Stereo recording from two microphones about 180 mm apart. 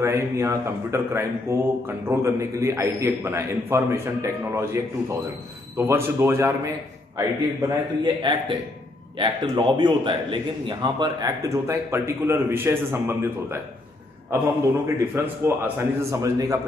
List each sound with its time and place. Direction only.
0.0 s a man's voice: 15° right (ahead or behind)
5.8 s a man's voice: 15° right (ahead or behind)